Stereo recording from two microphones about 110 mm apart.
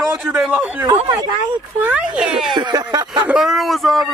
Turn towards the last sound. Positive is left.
turn(degrees=0)  # may be behind; listen again after turning